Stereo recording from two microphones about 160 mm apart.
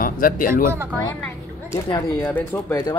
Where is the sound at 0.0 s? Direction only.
60° left (ahead or behind).